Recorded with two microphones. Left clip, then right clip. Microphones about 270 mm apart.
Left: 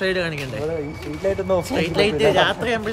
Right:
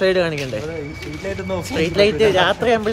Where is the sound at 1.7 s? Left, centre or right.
Centre.